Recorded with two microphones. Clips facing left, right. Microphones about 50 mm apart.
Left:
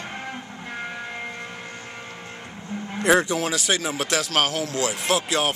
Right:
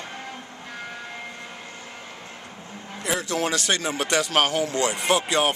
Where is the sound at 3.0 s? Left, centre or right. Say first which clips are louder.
Left 9 dB; left.